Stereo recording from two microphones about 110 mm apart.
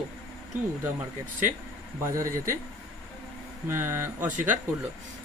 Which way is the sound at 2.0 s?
30° right (ahead or behind).